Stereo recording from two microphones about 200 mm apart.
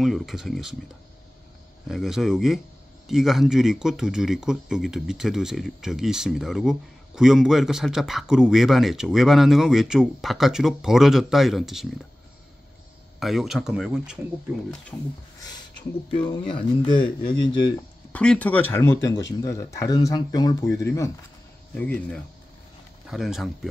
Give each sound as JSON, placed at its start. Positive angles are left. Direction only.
{"t": 0.0, "sound": "speech", "side_deg": 0}
{"t": 1.9, "sound": "speech", "side_deg": 0}
{"t": 13.2, "sound": "speech", "side_deg": 0}
{"t": 16.2, "sound": "speech", "side_deg": 25}
{"t": 18.1, "sound": "speech", "side_deg": 5}